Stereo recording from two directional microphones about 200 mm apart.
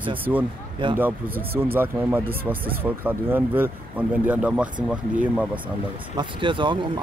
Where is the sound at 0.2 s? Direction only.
10° right (ahead or behind).